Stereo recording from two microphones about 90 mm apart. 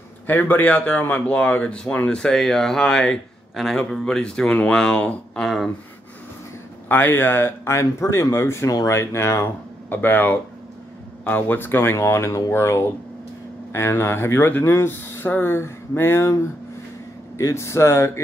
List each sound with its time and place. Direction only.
0.3 s speech: 20° left (ahead or behind)
5.4 s speech: centre (ahead or behind)
6.9 s speech: 25° left (ahead or behind)
17.4 s speech: 35° left (ahead or behind)